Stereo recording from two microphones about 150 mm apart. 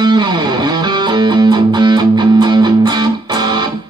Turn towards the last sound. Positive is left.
turn(degrees=-30)  # may be behind; listen again after turning